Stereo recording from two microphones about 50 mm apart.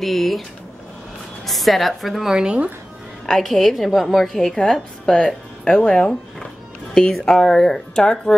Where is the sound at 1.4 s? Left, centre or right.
Centre.